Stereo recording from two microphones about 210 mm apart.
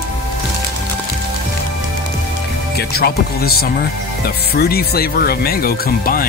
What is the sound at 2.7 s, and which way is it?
Speech, 50° left (ahead or behind).